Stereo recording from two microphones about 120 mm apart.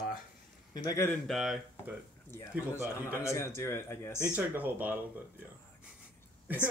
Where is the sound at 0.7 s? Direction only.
30° left (ahead or behind).